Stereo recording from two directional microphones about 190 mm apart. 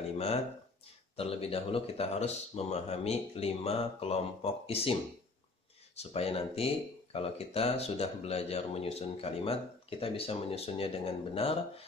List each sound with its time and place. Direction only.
1.1 s speech: 30° left (ahead or behind)
5.9 s speech: 30° left (ahead or behind)